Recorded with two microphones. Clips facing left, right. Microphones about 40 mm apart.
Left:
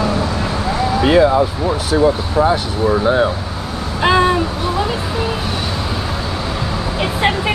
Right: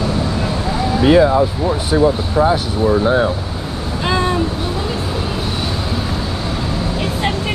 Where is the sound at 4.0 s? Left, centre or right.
Left.